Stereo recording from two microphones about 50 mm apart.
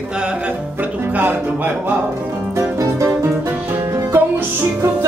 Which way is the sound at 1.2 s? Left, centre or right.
Right.